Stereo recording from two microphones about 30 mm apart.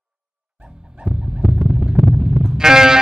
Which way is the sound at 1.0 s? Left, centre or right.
Centre.